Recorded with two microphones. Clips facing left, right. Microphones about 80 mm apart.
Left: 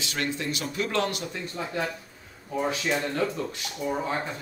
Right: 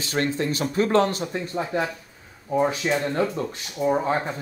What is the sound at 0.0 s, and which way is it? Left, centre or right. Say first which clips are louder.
Speech: right 6 dB; right.